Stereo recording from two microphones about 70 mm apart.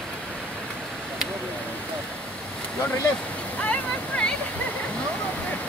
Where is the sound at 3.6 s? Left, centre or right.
Centre.